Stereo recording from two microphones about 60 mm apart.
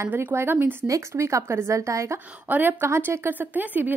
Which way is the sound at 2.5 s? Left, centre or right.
Right.